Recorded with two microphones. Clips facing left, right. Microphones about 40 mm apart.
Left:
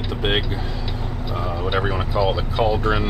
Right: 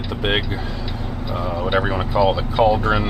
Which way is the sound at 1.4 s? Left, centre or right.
Centre.